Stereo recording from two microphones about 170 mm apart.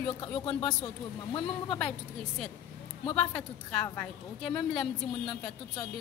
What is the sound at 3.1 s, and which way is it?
A woman's voice, 5° left (ahead or behind).